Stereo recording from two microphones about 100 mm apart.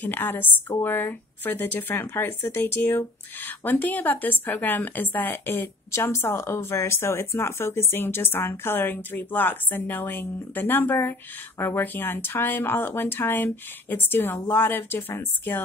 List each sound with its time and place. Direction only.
0.0 s a woman's voice: 20° left (ahead or behind)